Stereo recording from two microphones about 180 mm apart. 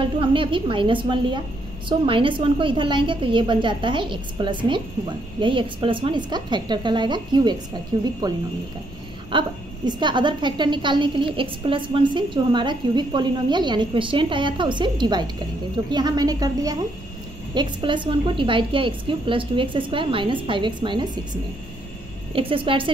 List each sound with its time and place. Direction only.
0.0 s a woman's voice: 30° right (ahead or behind)
9.3 s a woman's voice: 25° right (ahead or behind)